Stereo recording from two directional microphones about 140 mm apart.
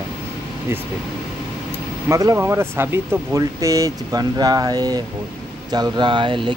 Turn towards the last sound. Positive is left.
turn(degrees=-35)  # may be behind; listen again after turning